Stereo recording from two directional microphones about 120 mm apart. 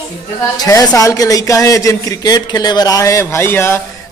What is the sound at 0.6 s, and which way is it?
Speech, 30° left (ahead or behind).